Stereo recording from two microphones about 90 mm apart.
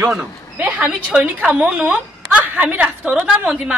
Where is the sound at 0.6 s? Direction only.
10° right (ahead or behind).